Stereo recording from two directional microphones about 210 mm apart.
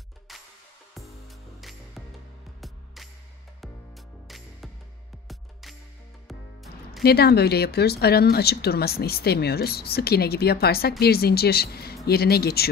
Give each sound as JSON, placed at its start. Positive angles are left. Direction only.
{"t": 0.3, "sound": "music", "side_deg": 0}
{"t": 1.6, "sound": "music", "side_deg": 0}
{"t": 7.0, "sound": "speech", "side_deg": 50}